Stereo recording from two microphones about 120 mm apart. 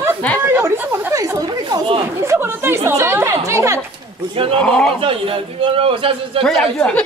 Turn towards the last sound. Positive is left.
turn(degrees=5)  # may be behind; listen again after turning